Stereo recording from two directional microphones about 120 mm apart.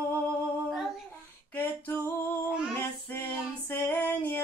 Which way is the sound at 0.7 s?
Centre (ahead or behind).